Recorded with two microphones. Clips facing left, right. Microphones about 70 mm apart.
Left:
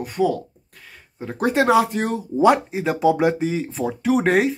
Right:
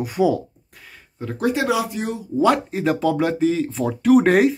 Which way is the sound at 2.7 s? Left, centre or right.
Centre.